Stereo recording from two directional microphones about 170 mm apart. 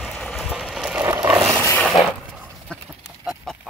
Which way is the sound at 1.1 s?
15° right (ahead or behind).